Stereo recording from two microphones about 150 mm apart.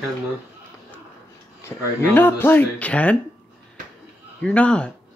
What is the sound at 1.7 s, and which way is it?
Speech, 15° left (ahead or behind).